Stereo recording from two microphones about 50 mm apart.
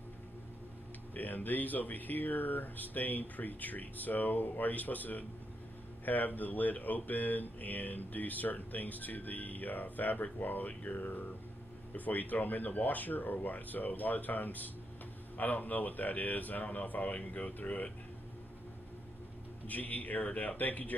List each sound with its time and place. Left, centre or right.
1.1 s speech: left
19.6 s speech: left